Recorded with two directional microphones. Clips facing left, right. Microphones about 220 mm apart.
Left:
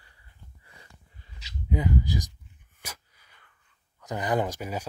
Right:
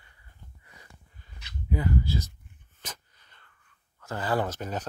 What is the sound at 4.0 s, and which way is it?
Speech, 15° left (ahead or behind).